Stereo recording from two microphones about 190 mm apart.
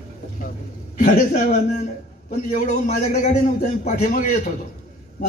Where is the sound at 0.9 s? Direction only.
45° left (ahead or behind).